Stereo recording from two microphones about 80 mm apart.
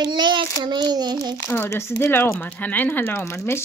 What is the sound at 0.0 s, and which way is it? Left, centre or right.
Child singing, right.